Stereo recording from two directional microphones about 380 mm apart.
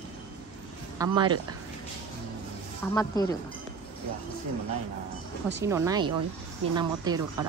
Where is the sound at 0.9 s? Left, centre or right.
Centre.